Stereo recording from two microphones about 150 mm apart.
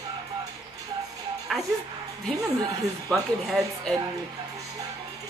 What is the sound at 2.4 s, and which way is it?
Speech, 20° right (ahead or behind).